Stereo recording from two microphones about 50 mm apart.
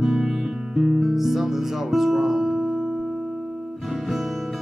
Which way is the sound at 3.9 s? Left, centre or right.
Centre.